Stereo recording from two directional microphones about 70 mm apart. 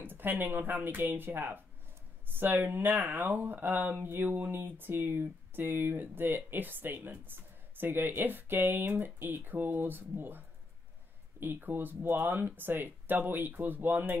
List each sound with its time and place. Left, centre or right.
0.0 s speech: right